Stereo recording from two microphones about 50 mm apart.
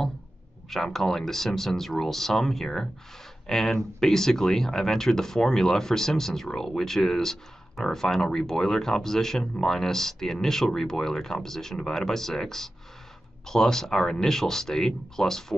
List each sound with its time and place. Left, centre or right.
0.9 s speech: centre